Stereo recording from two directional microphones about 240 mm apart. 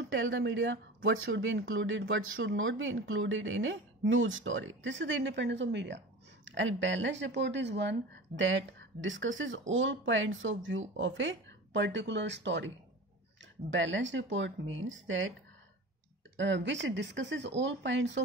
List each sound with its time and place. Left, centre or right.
0.1 s speech: right
16.3 s speech: right